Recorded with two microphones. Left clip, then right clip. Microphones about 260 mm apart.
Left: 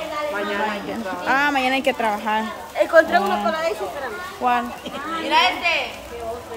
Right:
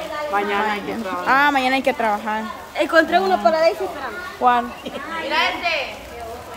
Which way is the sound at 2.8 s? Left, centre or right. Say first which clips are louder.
Left 1 dB; right.